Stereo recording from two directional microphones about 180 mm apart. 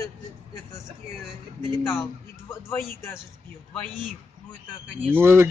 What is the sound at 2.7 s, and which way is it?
Speech, 15° left (ahead or behind).